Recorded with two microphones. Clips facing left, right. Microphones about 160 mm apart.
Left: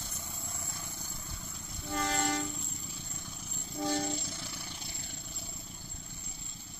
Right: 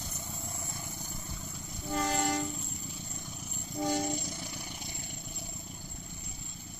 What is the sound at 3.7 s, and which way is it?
Train, 15° right (ahead or behind).